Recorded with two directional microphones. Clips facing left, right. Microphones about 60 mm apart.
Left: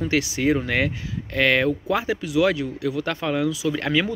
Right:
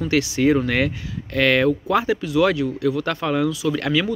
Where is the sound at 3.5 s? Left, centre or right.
Centre.